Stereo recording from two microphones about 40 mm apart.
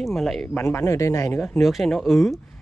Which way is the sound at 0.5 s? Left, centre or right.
Left.